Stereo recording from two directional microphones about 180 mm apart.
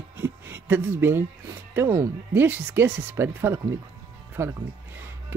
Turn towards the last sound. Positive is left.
turn(degrees=-15)  # may be behind; listen again after turning